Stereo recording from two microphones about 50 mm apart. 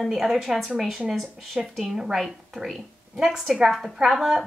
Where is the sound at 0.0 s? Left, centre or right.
Centre.